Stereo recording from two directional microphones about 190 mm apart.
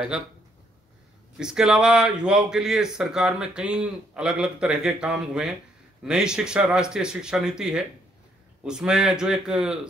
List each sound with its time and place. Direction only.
1.4 s speech: 5° right (ahead or behind)